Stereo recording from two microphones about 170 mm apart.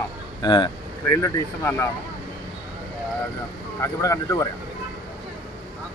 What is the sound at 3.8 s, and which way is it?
Speech, 20° left (ahead or behind).